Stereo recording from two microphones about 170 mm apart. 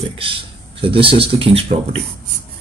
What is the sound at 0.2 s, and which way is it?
A man's voice, 30° right (ahead or behind).